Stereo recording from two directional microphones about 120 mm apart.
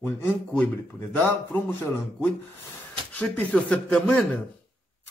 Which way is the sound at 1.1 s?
15° left (ahead or behind).